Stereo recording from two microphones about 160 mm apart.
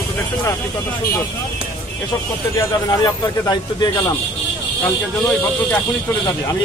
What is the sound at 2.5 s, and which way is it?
A man's voice, 25° left (ahead or behind).